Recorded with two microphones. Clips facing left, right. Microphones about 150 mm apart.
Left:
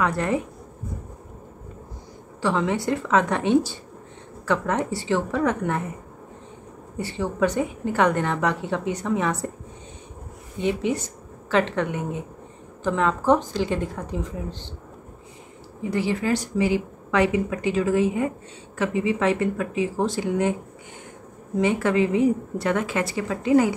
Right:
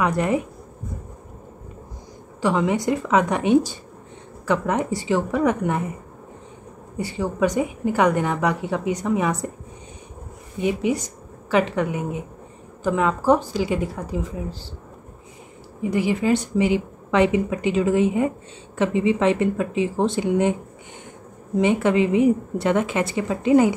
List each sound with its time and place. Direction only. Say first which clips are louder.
0.0 s a woman's voice: right 2 dB; 15° right (ahead or behind)
2.4 s a woman's voice: right 3 dB; 15° right (ahead or behind)
7.0 s a woman's voice: right 1 dB; 10° right (ahead or behind)
10.6 s a woman's voice: right 2 dB; 10° right (ahead or behind)
15.8 s a woman's voice: right 3 dB; 15° right (ahead or behind)
21.5 s a woman's voice: right 2 dB; 20° right (ahead or behind)